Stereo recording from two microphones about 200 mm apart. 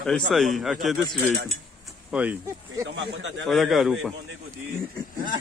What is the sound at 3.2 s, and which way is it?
Speech, 65° right (ahead or behind).